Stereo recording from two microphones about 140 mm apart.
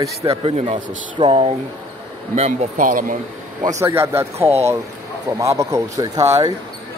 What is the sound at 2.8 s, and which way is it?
Speech, 75° right (ahead or behind).